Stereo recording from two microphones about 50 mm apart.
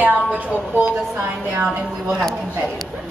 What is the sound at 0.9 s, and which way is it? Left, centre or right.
Speech, right.